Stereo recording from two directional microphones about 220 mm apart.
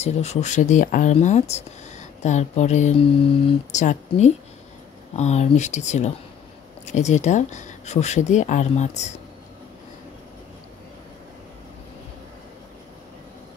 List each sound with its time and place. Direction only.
0.0 s speech: 30° left (ahead or behind)